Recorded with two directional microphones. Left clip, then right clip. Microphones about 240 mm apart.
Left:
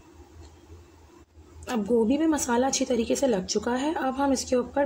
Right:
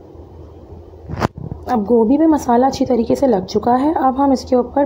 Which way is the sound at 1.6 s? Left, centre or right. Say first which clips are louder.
Right 10 dB; centre.